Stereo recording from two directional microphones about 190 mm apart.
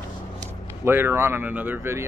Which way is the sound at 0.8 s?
10° right (ahead or behind).